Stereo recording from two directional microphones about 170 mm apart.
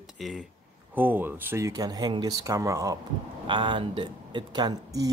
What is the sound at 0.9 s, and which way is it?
Speech, 10° right (ahead or behind).